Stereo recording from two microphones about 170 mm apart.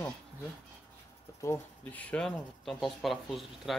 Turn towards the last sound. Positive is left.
turn(degrees=0)  # may be behind; listen again after turning